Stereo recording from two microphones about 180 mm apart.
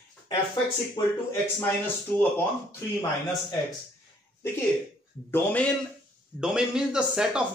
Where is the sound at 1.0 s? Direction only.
25° left (ahead or behind).